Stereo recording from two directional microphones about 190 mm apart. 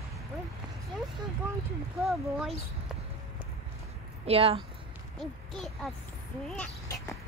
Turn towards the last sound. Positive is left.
turn(degrees=5)  # may be behind; listen again after turning